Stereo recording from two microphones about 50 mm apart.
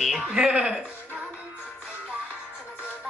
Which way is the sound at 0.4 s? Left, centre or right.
Centre.